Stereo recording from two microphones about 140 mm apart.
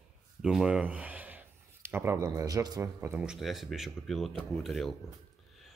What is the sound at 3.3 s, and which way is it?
Speech, centre (ahead or behind).